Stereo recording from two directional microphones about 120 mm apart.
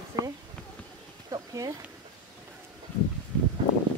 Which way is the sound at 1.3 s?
30° right (ahead or behind).